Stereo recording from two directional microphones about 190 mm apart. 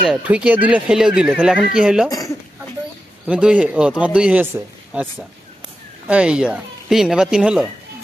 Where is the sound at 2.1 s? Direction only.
15° left (ahead or behind).